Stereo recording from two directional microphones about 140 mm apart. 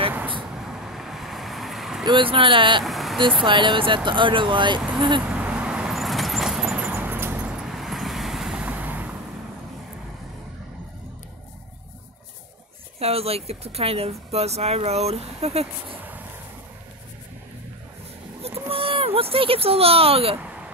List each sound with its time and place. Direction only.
0.6 s vehicle: 5° right (ahead or behind)
2.0 s speech: 35° right (ahead or behind)
2.8 s vehicle: centre (ahead or behind)
3.4 s speech: 35° right (ahead or behind)
5.2 s vehicle: 10° right (ahead or behind)
13.0 s speech: 45° right (ahead or behind)
18.7 s a sound: 40° right (ahead or behind)
20.3 s a sound: 10° right (ahead or behind)